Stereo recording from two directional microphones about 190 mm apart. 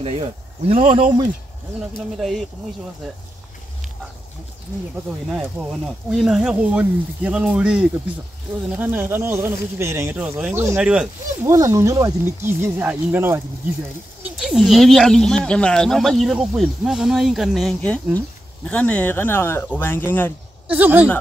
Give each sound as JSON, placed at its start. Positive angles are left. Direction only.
{"t": 0.0, "sound": "speech", "side_deg": -30}
{"t": 2.0, "sound": "speech", "side_deg": 0}
{"t": 5.3, "sound": "speech", "side_deg": -5}
{"t": 11.5, "sound": "speech", "side_deg": -15}
{"t": 20.6, "sound": "speech", "side_deg": -10}